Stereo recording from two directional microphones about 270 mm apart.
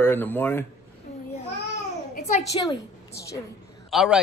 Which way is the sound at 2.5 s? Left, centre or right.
Centre.